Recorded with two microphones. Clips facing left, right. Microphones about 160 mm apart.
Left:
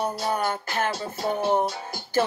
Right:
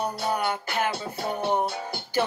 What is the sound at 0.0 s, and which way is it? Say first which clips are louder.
Speech: left 1 dB; 10° right (ahead or behind).